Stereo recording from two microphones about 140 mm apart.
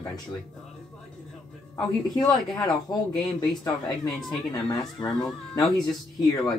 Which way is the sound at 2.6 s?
25° left (ahead or behind).